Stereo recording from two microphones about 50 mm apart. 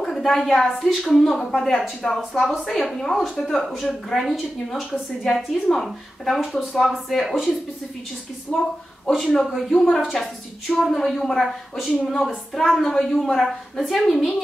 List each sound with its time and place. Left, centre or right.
0.0 s a woman's voice: centre
8.5 s a woman's voice: centre
9.1 s a woman's voice: centre
11.9 s a woman's voice: centre